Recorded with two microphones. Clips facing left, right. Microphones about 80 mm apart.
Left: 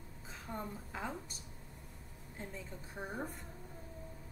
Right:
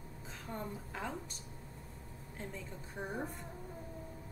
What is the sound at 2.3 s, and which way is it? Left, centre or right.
A woman's voice, centre.